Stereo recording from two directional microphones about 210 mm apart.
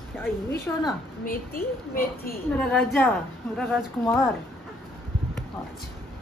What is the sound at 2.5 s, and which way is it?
A woman's voice, 5° left (ahead or behind).